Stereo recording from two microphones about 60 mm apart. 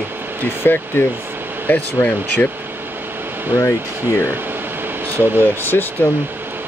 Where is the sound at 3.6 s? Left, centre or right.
Left.